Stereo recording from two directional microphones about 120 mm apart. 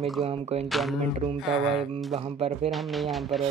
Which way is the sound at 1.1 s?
55° right (ahead or behind).